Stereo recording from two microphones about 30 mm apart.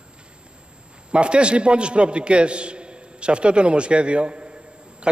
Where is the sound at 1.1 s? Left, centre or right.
Right.